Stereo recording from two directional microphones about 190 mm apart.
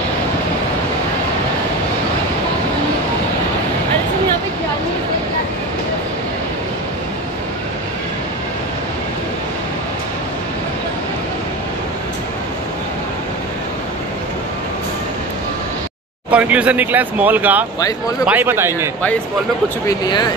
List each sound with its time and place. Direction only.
16.3 s speech: 5° right (ahead or behind)
19.9 s speech: 20° left (ahead or behind)